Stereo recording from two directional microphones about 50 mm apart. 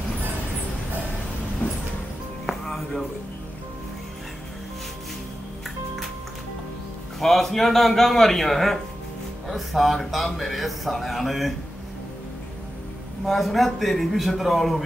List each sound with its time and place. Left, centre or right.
1.6 s vehicle: left
2.6 s music: centre
7.2 s a man's voice: centre
13.3 s a man's voice: centre